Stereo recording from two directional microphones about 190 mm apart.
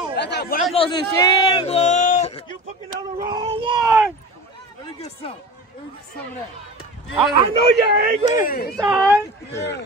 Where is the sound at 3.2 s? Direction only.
25° right (ahead or behind).